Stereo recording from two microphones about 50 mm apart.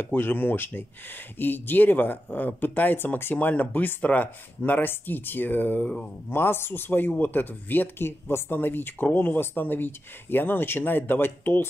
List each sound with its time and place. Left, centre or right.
0.0 s speech: left
8.0 s speech: left